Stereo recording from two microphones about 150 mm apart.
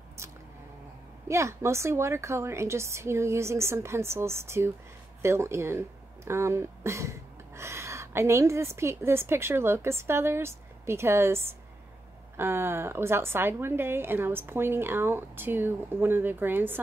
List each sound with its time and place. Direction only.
1.3 s a woman's voice: 20° right (ahead or behind)